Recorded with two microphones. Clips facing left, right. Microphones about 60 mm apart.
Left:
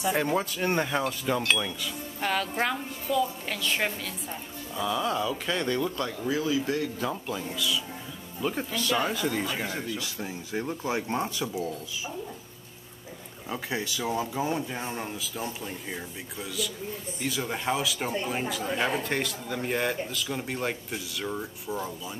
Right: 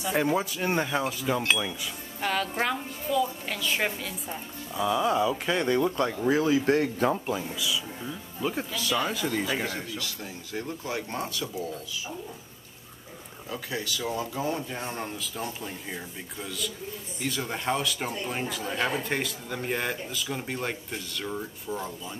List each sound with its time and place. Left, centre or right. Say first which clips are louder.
0.1 s a woman's voice: right 4 dB; centre
2.1 s a woman's voice: even; centre; by 7.2 s right
7.3 s a woman's voice: even; centre
9.9 s speech: left 2 dB; left
13.5 s speech: left 1 dB; left; by 21.9 s centre